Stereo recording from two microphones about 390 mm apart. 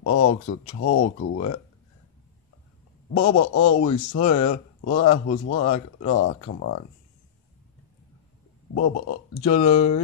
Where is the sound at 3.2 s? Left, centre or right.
Left.